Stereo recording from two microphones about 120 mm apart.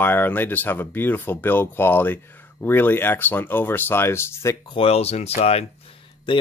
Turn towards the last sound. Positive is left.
turn(degrees=40)  # may be behind; listen again after turning